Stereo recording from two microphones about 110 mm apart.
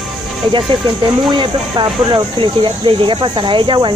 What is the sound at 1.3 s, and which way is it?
Speech, 50° right (ahead or behind).